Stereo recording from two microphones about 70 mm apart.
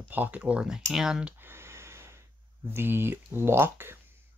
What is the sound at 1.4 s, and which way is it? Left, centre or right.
Snort, right.